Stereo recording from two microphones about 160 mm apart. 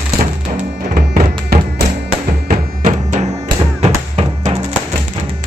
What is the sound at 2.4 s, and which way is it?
Music, 55° right (ahead or behind).